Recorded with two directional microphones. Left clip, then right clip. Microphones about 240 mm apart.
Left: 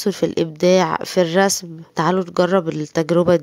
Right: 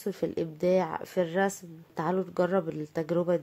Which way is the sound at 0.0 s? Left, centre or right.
Left.